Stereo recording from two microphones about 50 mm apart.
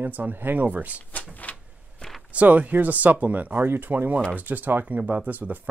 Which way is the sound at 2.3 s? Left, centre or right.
Right.